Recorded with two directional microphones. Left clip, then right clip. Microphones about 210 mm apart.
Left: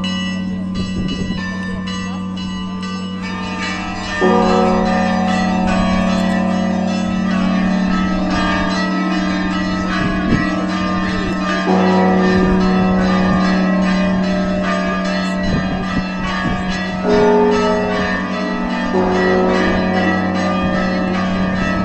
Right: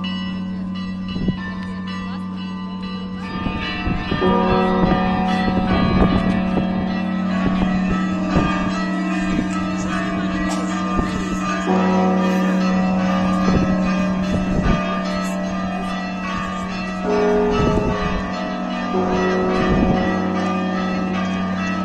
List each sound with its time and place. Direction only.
4.2 s music: 40° left (ahead or behind)
11.6 s change ringing: 30° left (ahead or behind)
17.1 s change ringing: 30° left (ahead or behind)
19.1 s change ringing: 25° left (ahead or behind)